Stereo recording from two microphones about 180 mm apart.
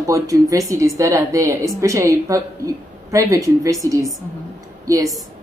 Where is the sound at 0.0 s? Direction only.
20° right (ahead or behind).